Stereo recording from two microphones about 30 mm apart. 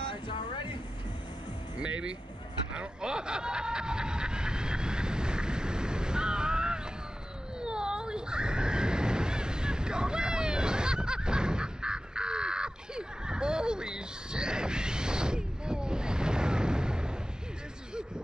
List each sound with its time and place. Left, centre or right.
1.8 s speech: right
2.7 s snicker: right
7.6 s screaming: right